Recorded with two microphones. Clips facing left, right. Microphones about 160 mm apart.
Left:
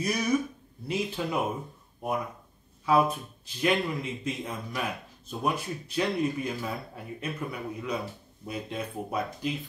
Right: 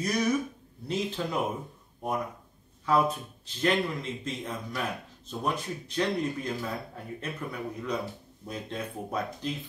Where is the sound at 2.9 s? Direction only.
10° left (ahead or behind).